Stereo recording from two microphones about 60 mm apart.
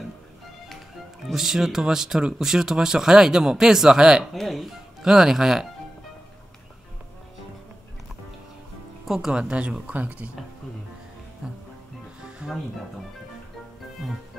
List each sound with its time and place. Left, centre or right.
1.2 s speech: centre
4.3 s speech: centre
9.0 s speech: centre
9.3 s speech: centre
11.4 s music: centre
14.0 s speech: centre